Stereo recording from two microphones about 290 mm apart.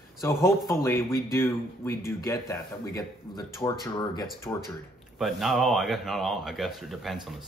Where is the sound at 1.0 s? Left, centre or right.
Left.